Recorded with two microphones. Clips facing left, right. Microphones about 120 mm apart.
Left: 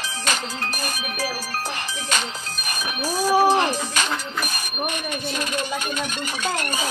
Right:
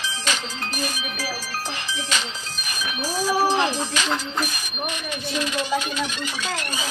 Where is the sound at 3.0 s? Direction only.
50° left (ahead or behind).